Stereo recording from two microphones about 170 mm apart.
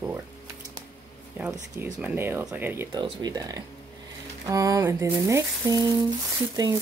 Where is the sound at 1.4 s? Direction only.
10° right (ahead or behind).